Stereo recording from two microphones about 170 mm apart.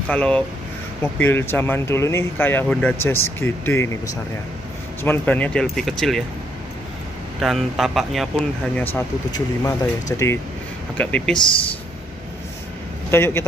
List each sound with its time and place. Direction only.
0.1 s speech: 5° left (ahead or behind)
7.3 s speech: centre (ahead or behind)
9.3 s speech: 20° left (ahead or behind)
13.1 s speech: 15° left (ahead or behind)